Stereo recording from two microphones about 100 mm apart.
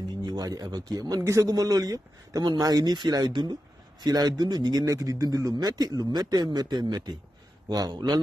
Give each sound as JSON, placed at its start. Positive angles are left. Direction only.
{"t": 0.2, "sound": "speech", "side_deg": -40}